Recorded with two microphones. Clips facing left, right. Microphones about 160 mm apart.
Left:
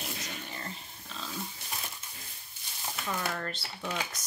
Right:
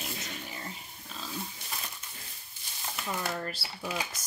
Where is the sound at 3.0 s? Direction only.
15° right (ahead or behind).